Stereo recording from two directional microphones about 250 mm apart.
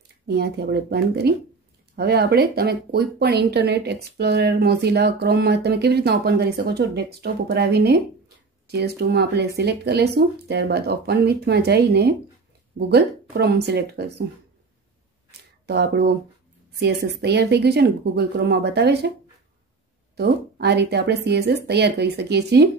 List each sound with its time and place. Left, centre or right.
0.3 s speech: right
15.6 s speech: right
20.2 s speech: right